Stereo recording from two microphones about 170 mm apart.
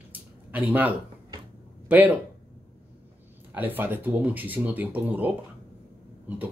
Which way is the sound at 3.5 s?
10° right (ahead or behind).